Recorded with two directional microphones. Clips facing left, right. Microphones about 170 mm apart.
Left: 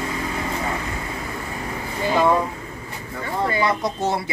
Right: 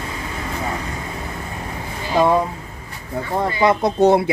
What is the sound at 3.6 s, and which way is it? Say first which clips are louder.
Speech: right 8 dB; 55° right (ahead or behind).